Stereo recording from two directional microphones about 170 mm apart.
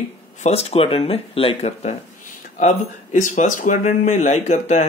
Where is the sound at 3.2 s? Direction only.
50° left (ahead or behind).